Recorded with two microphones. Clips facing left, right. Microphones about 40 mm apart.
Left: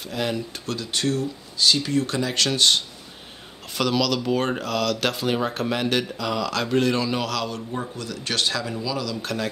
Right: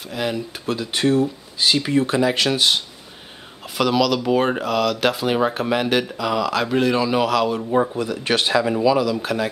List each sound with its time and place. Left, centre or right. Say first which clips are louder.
0.0 s speech: right 2 dB; centre
7.7 s speech: right 11 dB; right; by 9.5 s centre